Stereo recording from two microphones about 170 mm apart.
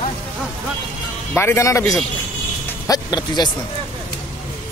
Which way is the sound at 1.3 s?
15° left (ahead or behind).